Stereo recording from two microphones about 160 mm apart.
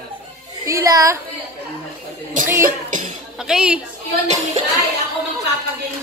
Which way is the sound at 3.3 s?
5° right (ahead or behind).